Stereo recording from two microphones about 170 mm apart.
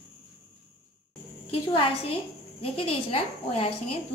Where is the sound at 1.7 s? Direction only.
30° left (ahead or behind).